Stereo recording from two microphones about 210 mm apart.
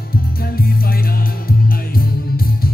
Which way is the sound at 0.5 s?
45° left (ahead or behind).